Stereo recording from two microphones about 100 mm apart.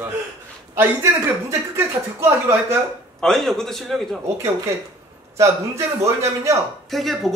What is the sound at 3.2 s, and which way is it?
A man's voice, 5° left (ahead or behind).